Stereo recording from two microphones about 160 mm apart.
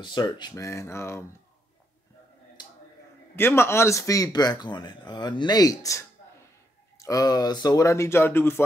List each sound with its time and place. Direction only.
0.0 s speech: 25° left (ahead or behind)
2.6 s a sound: 25° left (ahead or behind)
3.3 s speech: 15° left (ahead or behind)